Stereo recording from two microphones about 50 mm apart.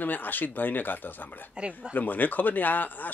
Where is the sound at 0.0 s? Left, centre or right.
Left.